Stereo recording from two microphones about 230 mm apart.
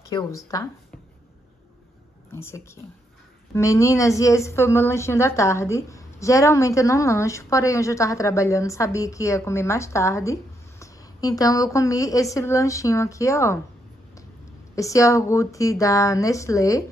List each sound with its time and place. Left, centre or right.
0.1 s a woman's voice: centre
2.3 s a woman's voice: centre
14.8 s a woman's voice: centre